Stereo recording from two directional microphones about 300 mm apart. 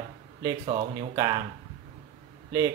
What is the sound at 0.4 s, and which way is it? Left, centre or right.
Speech, centre.